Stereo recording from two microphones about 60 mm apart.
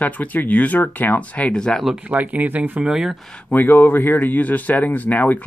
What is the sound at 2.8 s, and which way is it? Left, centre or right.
Speech, centre.